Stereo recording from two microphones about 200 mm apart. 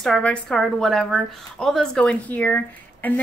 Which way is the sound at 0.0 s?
5° left (ahead or behind).